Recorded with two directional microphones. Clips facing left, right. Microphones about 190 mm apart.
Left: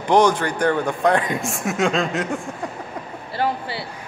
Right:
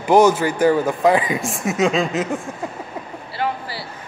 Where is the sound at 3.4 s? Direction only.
40° left (ahead or behind).